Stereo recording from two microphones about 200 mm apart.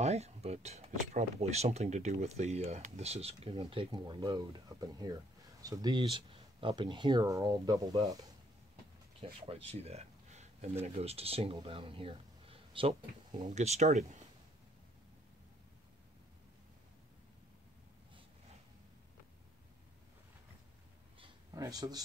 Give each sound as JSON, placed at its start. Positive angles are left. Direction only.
{"t": 0.0, "sound": "speech", "side_deg": -30}
{"t": 13.5, "sound": "speech", "side_deg": -35}
{"t": 21.2, "sound": "a sound", "side_deg": -20}